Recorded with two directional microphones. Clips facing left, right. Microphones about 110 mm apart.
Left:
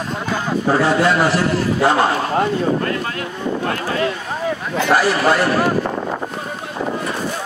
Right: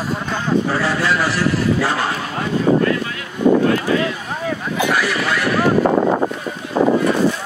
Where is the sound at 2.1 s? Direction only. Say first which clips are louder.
Left 4 dB; 40° left (ahead or behind).